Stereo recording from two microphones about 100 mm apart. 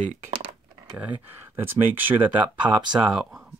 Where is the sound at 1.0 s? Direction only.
15° right (ahead or behind).